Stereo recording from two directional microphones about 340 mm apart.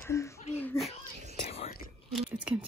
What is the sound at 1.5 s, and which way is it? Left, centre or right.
Whispering, centre.